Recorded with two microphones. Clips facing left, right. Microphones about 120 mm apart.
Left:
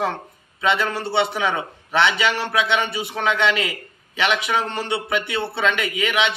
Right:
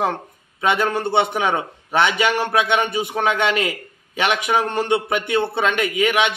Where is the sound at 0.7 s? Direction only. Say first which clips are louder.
Right 2 dB; 50° right (ahead or behind).